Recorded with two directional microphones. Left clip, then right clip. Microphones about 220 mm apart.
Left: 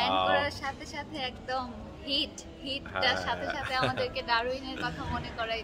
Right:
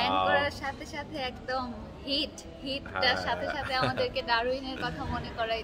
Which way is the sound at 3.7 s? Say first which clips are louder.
Right 1 dB; 10° left (ahead or behind).